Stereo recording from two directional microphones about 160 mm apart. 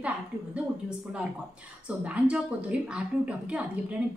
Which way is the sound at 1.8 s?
5° right (ahead or behind).